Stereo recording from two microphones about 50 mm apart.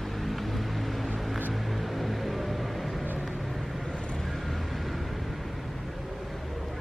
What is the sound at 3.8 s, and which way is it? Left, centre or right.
Vehicle, centre.